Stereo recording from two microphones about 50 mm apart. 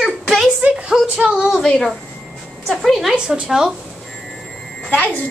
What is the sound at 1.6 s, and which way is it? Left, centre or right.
A woman's voice, centre.